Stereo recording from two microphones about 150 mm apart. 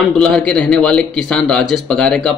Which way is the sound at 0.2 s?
5° left (ahead or behind).